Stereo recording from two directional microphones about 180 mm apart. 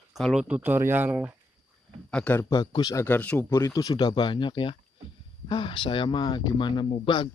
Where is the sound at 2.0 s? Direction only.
5° left (ahead or behind).